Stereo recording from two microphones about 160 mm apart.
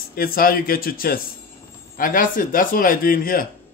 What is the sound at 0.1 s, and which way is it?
Speech, 70° left (ahead or behind).